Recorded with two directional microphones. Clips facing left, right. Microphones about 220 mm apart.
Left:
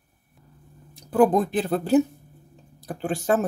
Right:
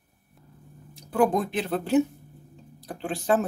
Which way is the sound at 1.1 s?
35° left (ahead or behind).